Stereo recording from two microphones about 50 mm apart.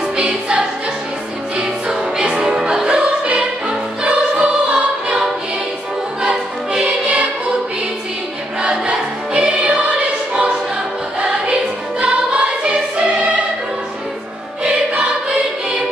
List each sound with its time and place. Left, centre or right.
0.2 s music: centre
6.2 s music: centre
8.6 s music: right
12.0 s choir: right
14.6 s music: centre